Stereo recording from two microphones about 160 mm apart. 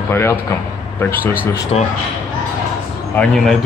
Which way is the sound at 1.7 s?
40° left (ahead or behind).